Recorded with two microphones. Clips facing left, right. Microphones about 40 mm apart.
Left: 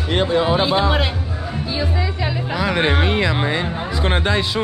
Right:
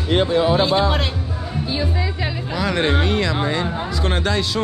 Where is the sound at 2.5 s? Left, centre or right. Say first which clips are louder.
Left 1 dB; centre.